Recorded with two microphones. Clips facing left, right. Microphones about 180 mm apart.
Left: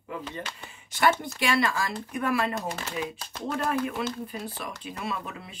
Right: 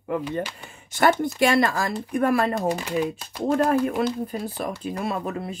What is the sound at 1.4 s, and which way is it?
Speech, 45° right (ahead or behind).